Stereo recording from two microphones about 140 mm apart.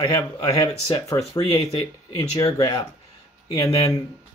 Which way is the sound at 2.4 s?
25° left (ahead or behind).